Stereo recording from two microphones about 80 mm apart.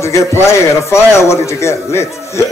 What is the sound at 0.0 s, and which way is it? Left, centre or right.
Speech, left.